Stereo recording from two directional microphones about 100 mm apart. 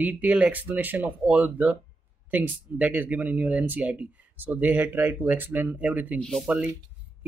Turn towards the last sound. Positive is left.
turn(degrees=-10)  # may be behind; listen again after turning